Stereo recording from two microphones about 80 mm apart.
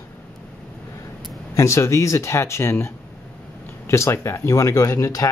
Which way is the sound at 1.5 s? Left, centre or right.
Left.